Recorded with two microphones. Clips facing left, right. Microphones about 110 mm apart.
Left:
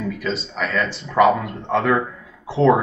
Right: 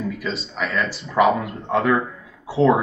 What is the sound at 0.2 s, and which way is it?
Speech, centre (ahead or behind).